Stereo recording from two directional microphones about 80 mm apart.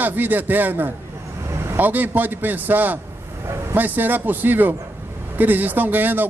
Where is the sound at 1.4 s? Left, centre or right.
Right.